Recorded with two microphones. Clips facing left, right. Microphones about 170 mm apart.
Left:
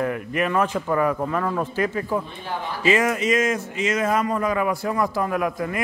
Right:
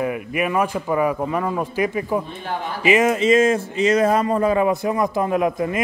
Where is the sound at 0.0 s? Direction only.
10° right (ahead or behind).